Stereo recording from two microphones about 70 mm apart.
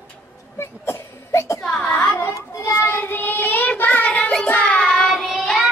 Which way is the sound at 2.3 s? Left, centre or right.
Left.